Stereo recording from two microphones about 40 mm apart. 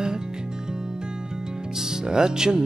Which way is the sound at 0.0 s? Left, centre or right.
Centre.